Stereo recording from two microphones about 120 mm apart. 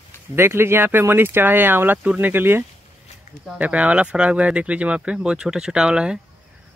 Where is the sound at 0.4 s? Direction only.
20° right (ahead or behind).